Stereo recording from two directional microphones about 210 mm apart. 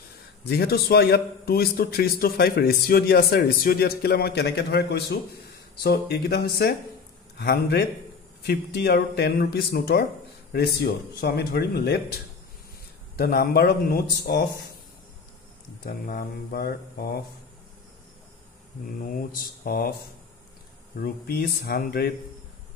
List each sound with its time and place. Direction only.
0.5 s a man's voice: 50° left (ahead or behind)
15.8 s a man's voice: 45° left (ahead or behind)
19.6 s speech: 45° left (ahead or behind)
20.9 s a man's voice: 45° left (ahead or behind)